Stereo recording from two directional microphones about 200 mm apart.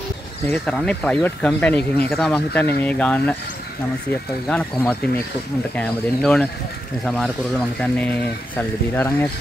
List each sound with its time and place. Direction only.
0.5 s speech: 5° left (ahead or behind)
4.5 s speech: 10° left (ahead or behind)